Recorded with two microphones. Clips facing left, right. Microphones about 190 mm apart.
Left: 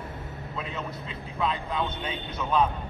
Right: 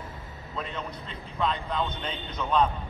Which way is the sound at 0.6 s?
5° left (ahead or behind).